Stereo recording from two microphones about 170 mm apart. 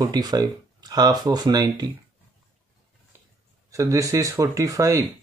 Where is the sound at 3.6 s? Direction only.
20° right (ahead or behind).